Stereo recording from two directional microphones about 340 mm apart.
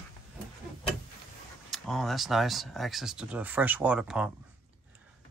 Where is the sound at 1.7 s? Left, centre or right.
Centre.